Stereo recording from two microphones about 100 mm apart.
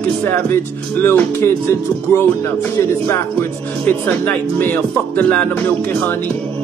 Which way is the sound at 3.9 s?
20° left (ahead or behind).